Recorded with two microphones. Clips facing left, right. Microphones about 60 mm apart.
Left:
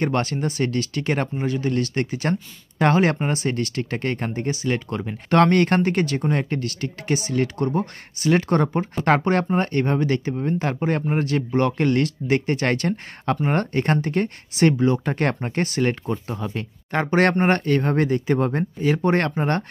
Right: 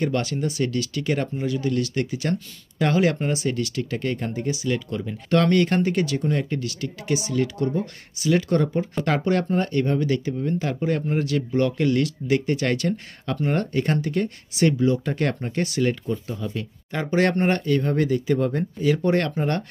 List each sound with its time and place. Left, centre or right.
0.0 s speech: left